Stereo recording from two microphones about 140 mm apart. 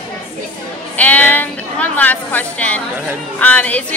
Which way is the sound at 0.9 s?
10° left (ahead or behind).